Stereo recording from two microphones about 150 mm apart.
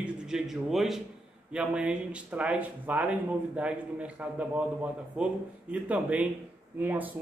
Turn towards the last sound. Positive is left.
turn(degrees=-10)  # may be behind; listen again after turning